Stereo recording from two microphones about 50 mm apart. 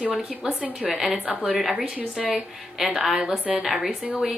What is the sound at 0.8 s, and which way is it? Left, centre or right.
Speech, centre.